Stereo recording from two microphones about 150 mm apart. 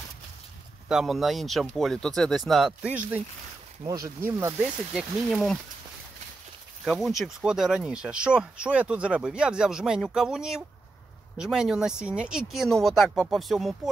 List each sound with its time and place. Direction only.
0.8 s speech: 5° right (ahead or behind)
3.8 s speech: 25° right (ahead or behind)
4.9 s speech: centre (ahead or behind)
6.8 s speech: centre (ahead or behind)